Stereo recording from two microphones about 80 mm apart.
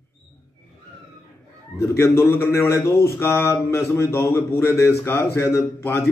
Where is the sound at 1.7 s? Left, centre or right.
Left.